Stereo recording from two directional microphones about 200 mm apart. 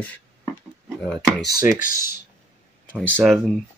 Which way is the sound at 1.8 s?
45° left (ahead or behind).